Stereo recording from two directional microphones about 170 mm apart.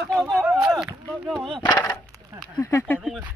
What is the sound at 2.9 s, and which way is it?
Speech, 5° right (ahead or behind).